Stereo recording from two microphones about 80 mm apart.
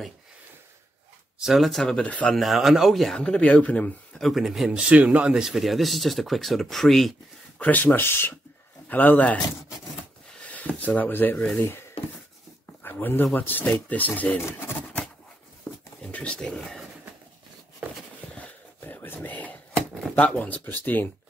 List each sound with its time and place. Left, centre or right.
1.4 s speech: centre
2.3 s speech: centre
3.2 s speech: centre
4.1 s speech: centre
7.5 s speech: left
10.4 s a sound: centre
10.8 s speech: centre
12.8 s speech: left
15.7 s a sound: left
16.1 s speech: centre
18.3 s a sound: left
19.7 s a sound: centre
20.2 s speech: centre